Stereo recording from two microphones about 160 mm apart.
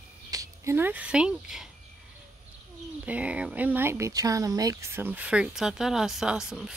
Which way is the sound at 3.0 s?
10° right (ahead or behind).